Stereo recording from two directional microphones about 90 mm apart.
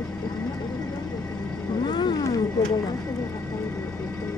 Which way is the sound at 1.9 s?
55° left (ahead or behind).